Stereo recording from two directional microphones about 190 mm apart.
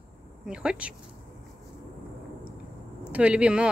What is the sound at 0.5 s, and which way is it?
Speech, 5° right (ahead or behind).